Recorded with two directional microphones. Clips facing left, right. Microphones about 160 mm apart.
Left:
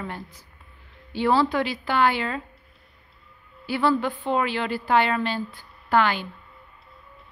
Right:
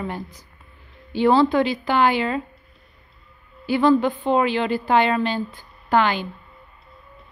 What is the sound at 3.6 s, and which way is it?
A woman's voice, 20° right (ahead or behind).